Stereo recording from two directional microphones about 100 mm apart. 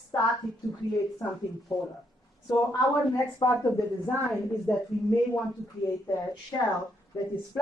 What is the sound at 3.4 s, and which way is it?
Speech, 60° left (ahead or behind).